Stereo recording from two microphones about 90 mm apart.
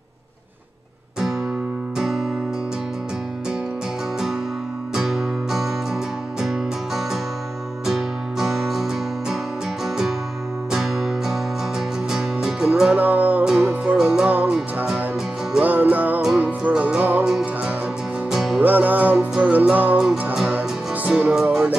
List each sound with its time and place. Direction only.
2.0 s music: 5° right (ahead or behind)
4.9 s music: 5° right (ahead or behind)
17.2 s music: 5° right (ahead or behind)
18.6 s music: 20° right (ahead or behind)